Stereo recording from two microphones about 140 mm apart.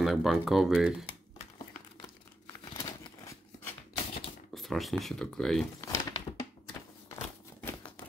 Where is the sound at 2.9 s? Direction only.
25° left (ahead or behind).